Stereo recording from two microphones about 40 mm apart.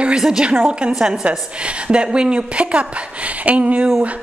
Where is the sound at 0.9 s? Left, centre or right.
Centre.